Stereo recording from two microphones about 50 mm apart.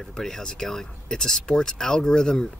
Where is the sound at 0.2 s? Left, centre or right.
Centre.